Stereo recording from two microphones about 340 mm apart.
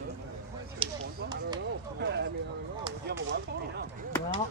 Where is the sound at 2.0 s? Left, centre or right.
Right.